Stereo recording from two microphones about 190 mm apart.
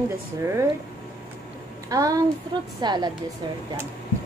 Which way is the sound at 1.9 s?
20° right (ahead or behind).